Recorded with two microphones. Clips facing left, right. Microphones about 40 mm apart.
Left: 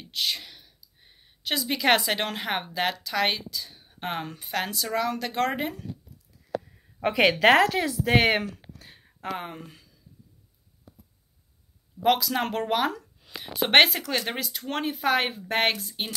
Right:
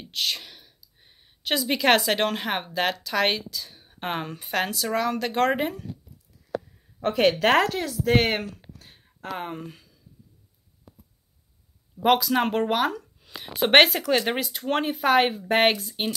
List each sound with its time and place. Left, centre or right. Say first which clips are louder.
0.1 s speech: right 1 dB; centre
4.6 s speech: right 2 dB; centre
7.2 s a woman's voice: left 1 dB; centre
8.7 s a sound: left 2 dB; centre
12.0 s speech: right 3 dB; centre
14.2 s speech: right 5 dB; centre